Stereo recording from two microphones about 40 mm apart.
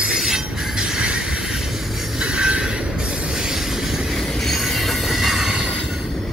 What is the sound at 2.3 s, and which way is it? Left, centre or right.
Train, right.